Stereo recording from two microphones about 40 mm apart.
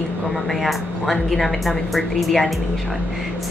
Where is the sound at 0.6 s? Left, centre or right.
Centre.